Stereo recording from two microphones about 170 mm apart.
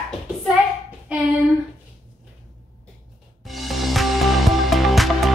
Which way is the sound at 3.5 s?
Centre (ahead or behind).